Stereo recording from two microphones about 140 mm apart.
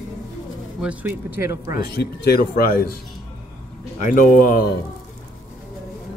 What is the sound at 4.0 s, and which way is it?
Speech, 80° left.